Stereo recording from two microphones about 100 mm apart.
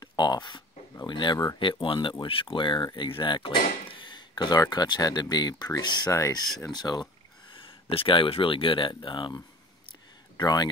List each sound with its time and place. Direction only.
0.0 s speech: 40° left (ahead or behind)
6.1 s speech: 30° left (ahead or behind)
6.6 s speech: 45° left (ahead or behind)
7.5 s speech: 65° left (ahead or behind); by 10.7 s 45° left (ahead or behind)